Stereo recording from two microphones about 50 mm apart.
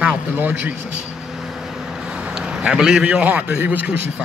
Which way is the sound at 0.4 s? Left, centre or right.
Right.